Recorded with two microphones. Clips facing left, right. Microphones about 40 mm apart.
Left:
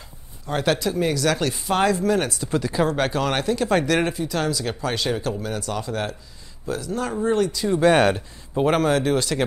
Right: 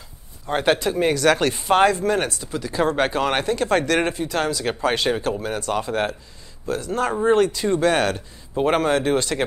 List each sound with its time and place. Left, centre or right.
0.5 s speech: right
6.9 s speech: right
7.8 s speech: left
8.6 s speech: centre